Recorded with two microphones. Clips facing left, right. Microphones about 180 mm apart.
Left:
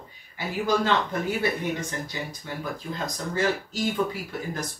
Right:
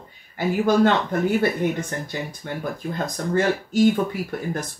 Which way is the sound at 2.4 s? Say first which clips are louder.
Right 5 dB; 55° right (ahead or behind).